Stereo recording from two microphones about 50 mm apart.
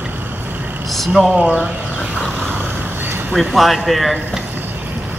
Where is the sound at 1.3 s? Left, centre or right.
Centre.